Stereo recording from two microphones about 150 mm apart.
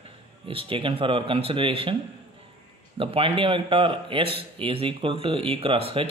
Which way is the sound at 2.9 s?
35° right (ahead or behind).